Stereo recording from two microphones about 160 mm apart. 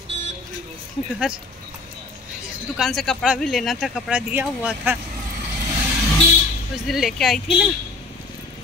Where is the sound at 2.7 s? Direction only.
Centre (ahead or behind).